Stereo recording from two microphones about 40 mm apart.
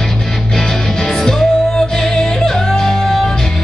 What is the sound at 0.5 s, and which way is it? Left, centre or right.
Music, centre.